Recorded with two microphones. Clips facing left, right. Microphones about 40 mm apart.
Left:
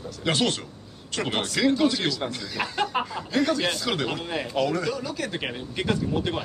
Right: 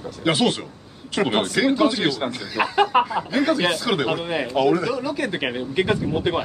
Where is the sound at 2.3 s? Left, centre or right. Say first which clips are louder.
Right 7 dB; centre.